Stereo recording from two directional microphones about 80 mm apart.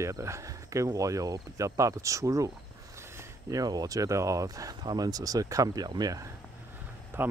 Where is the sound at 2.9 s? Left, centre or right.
Right.